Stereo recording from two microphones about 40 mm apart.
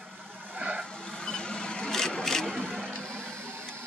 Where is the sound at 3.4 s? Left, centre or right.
Right.